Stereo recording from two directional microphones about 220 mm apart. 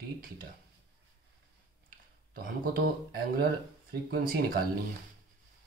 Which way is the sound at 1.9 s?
40° right (ahead or behind).